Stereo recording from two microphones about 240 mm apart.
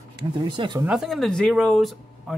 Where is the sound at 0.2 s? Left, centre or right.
Centre.